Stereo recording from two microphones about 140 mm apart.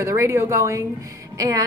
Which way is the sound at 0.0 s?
20° right (ahead or behind).